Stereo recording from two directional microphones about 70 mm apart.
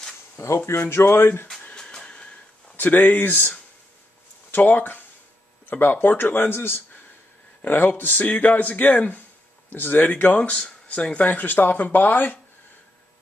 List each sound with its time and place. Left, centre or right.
0.7 s speech: left
1.6 s a sound: centre
2.7 s speech: left